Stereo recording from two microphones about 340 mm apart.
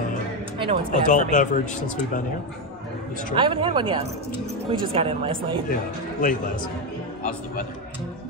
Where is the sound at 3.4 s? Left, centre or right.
Centre.